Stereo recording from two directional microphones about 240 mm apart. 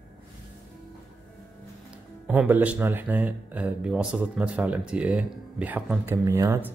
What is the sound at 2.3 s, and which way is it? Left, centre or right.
Speech, centre.